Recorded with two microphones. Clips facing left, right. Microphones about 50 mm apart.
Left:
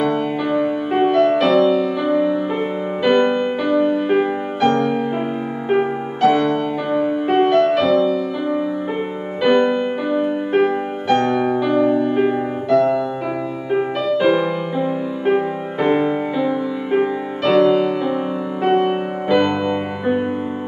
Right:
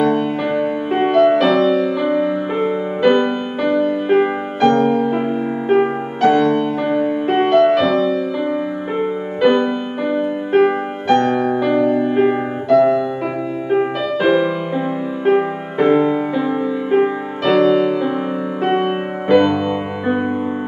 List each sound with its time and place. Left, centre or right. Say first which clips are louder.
0.0 s music: right 2 dB; centre
0.9 s music: right 2 dB; centre
2.6 s music: right 4 dB; centre
3.2 s music: left 2 dB; centre
5.7 s music: right 3 dB; centre
9.4 s music: even; centre
11.5 s music: right 1 dB; centre
12.6 s music: right 3 dB; centre
15.9 s music: right 2 dB; centre
16.4 s music: right 2 dB; centre
18.7 s music: left 2 dB; centre